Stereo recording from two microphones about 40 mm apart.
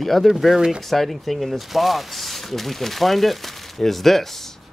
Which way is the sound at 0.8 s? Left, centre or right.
Centre.